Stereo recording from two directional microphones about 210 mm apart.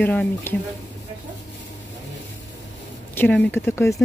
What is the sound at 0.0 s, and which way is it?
Speech, 5° left (ahead or behind).